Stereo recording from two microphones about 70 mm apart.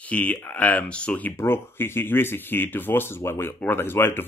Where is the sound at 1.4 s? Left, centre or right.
Left.